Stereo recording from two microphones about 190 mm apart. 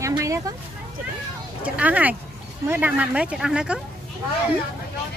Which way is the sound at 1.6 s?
5° right (ahead or behind).